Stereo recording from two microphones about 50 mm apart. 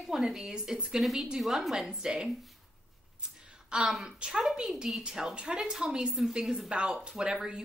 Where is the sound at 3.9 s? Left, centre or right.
Centre.